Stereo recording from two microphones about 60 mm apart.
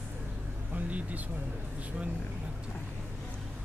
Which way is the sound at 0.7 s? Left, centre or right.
Right.